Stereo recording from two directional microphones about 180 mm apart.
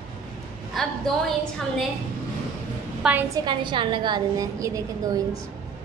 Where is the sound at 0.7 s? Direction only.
Centre (ahead or behind).